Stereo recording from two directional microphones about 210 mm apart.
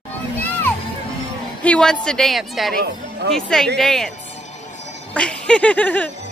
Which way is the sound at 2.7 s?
50° right (ahead or behind).